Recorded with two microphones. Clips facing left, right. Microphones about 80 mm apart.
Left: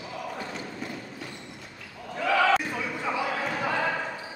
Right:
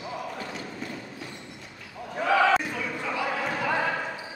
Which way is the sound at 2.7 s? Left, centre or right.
Centre.